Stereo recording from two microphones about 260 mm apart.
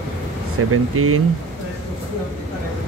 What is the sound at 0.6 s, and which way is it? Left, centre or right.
Speech, right.